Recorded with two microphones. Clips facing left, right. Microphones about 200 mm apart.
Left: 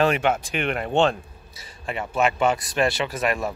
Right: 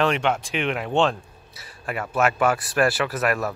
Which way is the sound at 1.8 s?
25° left (ahead or behind).